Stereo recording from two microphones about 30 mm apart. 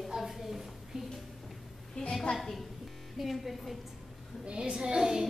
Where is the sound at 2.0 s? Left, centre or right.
Left.